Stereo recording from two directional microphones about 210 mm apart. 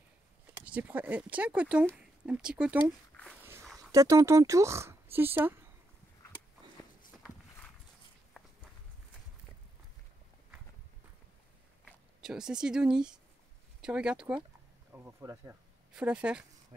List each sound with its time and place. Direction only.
0.7 s speech: 5° right (ahead or behind)
3.9 s speech: 15° right (ahead or behind)
11.8 s speech: 5° right (ahead or behind)